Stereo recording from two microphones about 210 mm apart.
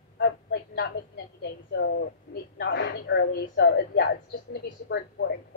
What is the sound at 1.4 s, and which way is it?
Speech, 60° left (ahead or behind).